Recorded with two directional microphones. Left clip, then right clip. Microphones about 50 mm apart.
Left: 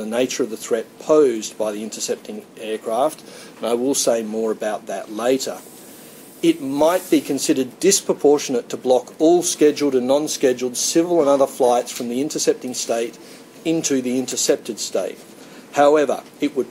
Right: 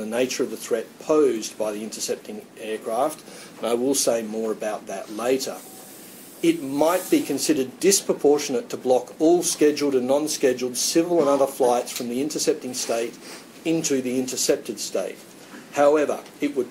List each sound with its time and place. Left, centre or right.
0.0 s speech: left